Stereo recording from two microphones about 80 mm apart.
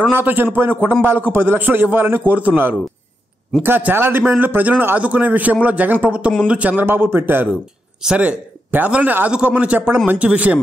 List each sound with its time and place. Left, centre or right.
0.1 s a man's voice: right